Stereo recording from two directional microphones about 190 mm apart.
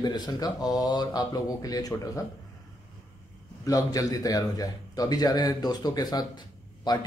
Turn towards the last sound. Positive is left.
turn(degrees=20)  # may be behind; listen again after turning